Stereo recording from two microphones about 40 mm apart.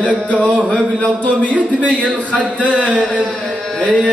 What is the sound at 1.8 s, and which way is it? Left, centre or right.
Speech, left.